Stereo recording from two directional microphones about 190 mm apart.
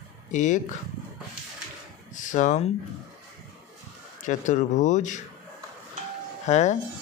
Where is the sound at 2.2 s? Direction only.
40° left (ahead or behind).